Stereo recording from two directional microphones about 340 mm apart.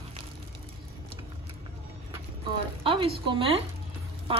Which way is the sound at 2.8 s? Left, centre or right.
Centre.